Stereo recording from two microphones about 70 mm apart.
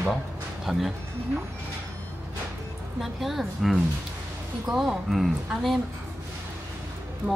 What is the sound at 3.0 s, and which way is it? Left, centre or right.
Speech, centre.